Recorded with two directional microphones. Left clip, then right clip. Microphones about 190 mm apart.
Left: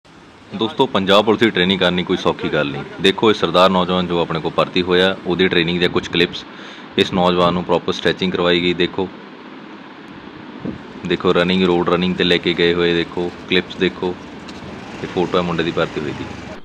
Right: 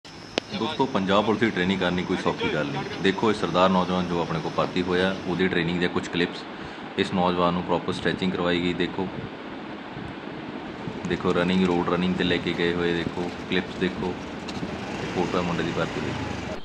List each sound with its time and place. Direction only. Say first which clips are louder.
0.7 s speech: left 9 dB; 20° left (ahead or behind)
11.1 s speech: left 9 dB; 20° left (ahead or behind)
15.0 s speech: left 8 dB; centre (ahead or behind)